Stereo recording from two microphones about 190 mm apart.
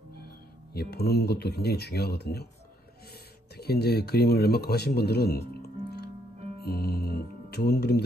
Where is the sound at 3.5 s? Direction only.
55° left (ahead or behind).